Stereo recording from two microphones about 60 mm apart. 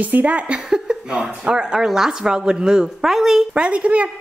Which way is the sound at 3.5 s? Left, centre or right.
Centre.